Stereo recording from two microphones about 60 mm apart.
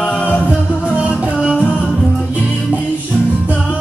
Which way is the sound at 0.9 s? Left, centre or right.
Right.